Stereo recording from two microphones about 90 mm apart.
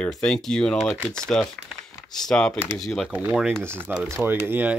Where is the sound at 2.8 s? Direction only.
Centre (ahead or behind).